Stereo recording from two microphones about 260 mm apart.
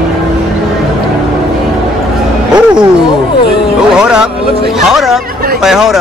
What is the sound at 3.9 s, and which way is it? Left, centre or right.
A woman's voice, centre.